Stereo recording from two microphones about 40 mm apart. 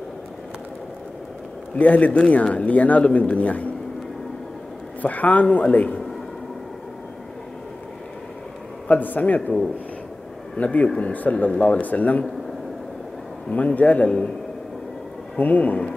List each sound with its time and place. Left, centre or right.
1.8 s speech: left
5.0 s speech: left
8.8 s a man's voice: left
10.6 s speech: left
11.5 s speech: left
11.8 s speech: left
13.5 s speech: left
15.3 s speech: left